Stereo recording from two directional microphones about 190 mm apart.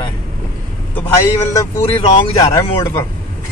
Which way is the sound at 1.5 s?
20° left (ahead or behind).